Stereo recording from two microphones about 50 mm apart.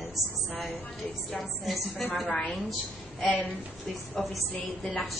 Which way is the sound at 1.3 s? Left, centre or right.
Centre.